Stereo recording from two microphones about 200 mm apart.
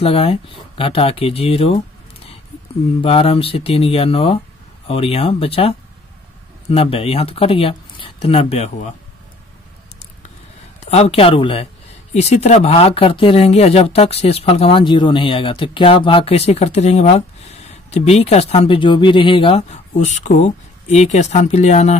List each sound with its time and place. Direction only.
0.0 s speech: 30° left (ahead or behind)
3.0 s speech: 30° left (ahead or behind)
10.9 s speech: 30° left (ahead or behind)